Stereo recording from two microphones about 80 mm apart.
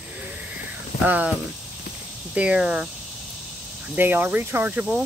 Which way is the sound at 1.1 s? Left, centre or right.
Centre.